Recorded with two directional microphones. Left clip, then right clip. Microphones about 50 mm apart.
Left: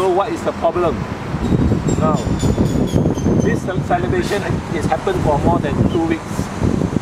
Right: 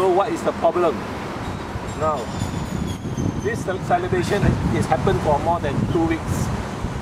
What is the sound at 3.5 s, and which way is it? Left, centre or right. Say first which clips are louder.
Speech: left 2 dB; centre.